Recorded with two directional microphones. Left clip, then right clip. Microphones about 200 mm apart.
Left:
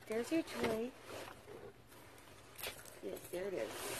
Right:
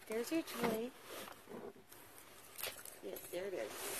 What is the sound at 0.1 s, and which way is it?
Speech, 15° right (ahead or behind).